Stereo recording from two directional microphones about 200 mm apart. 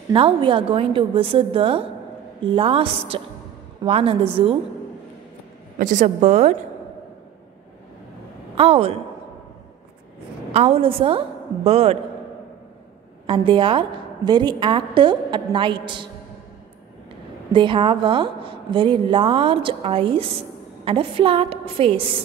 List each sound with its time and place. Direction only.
0.1 s a woman's voice: 25° right (ahead or behind)
5.8 s a woman's voice: 40° right (ahead or behind)
8.5 s a woman's voice: 30° right (ahead or behind)
10.5 s a woman's voice: 30° right (ahead or behind)
13.3 s a woman's voice: 25° right (ahead or behind)
17.5 s a woman's voice: 25° right (ahead or behind)